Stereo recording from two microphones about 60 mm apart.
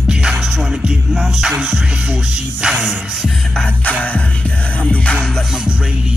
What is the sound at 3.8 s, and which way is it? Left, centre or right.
Music, left.